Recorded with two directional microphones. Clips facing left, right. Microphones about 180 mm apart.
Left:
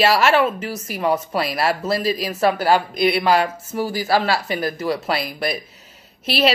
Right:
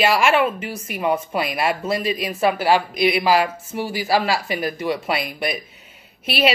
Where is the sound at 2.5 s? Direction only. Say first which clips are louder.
Even; 5° right (ahead or behind).